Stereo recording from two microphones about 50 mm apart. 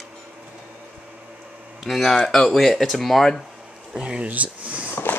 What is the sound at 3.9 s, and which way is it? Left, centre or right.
Speech, centre.